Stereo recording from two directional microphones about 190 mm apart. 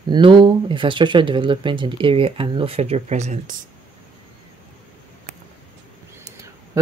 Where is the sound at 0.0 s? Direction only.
25° right (ahead or behind).